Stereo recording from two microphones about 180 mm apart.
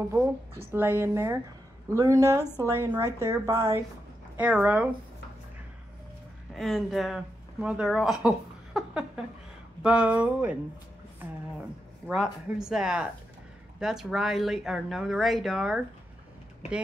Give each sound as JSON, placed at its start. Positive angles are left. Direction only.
{"t": 0.7, "sound": "a woman's voice", "side_deg": -10}
{"t": 6.5, "sound": "a woman's voice", "side_deg": 0}
{"t": 12.1, "sound": "speech", "side_deg": 0}